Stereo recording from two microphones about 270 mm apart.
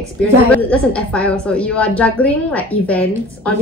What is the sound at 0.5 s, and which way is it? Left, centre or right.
A woman's voice, centre.